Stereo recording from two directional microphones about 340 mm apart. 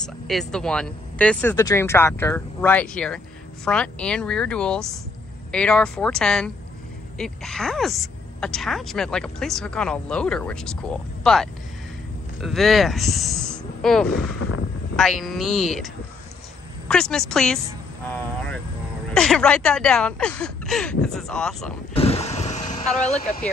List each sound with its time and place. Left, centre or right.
0.0 s speech: centre
19.1 s speech: centre
21.9 s vehicle: centre